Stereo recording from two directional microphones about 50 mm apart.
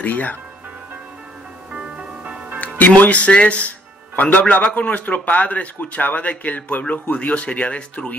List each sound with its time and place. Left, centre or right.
0.0 s speech: left
1.7 s music: right
3.1 s speech: left